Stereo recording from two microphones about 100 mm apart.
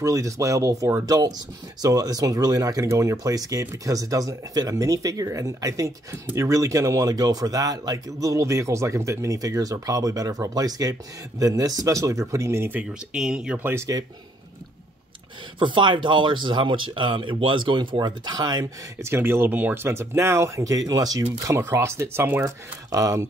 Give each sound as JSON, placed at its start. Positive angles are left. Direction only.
{"t": 0.0, "sound": "speech", "side_deg": -35}
{"t": 13.1, "sound": "speech", "side_deg": -5}
{"t": 13.6, "sound": "speech", "side_deg": -20}
{"t": 15.6, "sound": "speech", "side_deg": -55}
{"t": 19.0, "sound": "speech", "side_deg": -25}
{"t": 22.4, "sound": "speech", "side_deg": -35}